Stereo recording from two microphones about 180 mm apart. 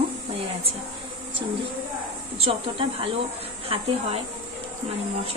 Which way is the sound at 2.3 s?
30° right (ahead or behind).